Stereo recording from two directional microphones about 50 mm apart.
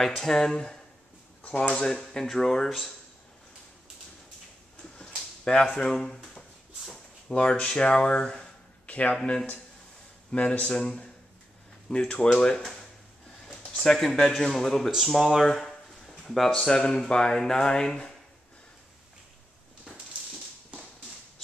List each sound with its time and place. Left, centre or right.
0.0 s speech: centre
4.9 s a sound: centre
7.2 s speech: centre
8.8 s a sound: left
9.1 s speech: centre
12.5 s speech: centre